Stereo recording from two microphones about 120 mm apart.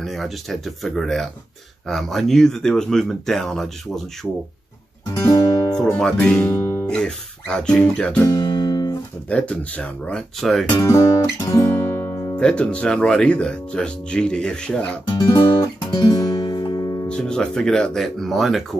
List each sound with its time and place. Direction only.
0.0 s speech: centre (ahead or behind)
5.2 s guitar: 30° left (ahead or behind)
5.9 s speech: 5° left (ahead or behind)
6.5 s guitar: 20° left (ahead or behind)
6.9 s speech: 5° left (ahead or behind)
8.3 s music: 35° left (ahead or behind)
9.3 s speech: 10° left (ahead or behind)
10.8 s speech: 25° left (ahead or behind)
11.3 s guitar: 30° left (ahead or behind)
12.4 s speech: 10° left (ahead or behind)
15.0 s guitar: 30° left (ahead or behind)
17.1 s speech: 5° left (ahead or behind)